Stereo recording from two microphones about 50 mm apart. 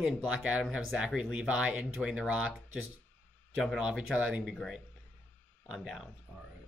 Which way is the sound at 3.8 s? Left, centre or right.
Centre.